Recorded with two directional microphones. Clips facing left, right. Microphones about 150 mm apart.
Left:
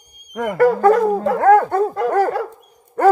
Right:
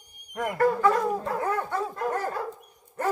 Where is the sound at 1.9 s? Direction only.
90° left.